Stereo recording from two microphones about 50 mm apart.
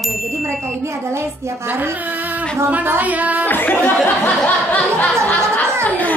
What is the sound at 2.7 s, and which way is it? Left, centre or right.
Speech, right.